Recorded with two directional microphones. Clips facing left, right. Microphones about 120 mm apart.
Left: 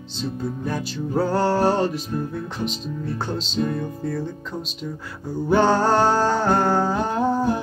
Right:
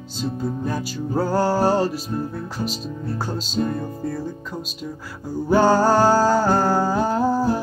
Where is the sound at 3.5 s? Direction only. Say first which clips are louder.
Right 1 dB; 35° right (ahead or behind).